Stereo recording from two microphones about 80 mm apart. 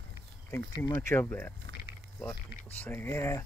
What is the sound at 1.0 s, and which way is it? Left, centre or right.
Speech, left.